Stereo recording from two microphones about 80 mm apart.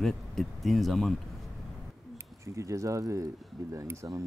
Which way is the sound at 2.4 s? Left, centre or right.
Right.